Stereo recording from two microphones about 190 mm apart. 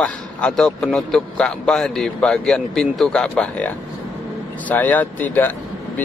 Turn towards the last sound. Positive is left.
turn(degrees=10)  # may be behind; listen again after turning